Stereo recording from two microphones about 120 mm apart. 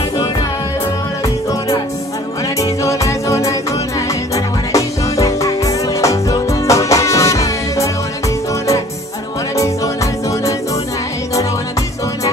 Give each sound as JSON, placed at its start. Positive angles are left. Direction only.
{"t": 2.8, "sound": "music", "side_deg": 25}
{"t": 4.7, "sound": "music", "side_deg": 25}